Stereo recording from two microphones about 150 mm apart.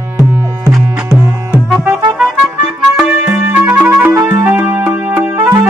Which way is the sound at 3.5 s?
10° right (ahead or behind).